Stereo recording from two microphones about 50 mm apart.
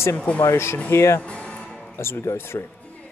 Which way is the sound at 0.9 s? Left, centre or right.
Left.